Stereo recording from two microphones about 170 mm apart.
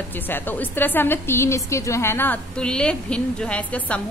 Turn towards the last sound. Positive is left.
turn(degrees=5)  # may be behind; listen again after turning